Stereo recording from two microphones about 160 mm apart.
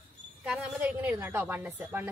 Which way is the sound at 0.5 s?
10° right (ahead or behind).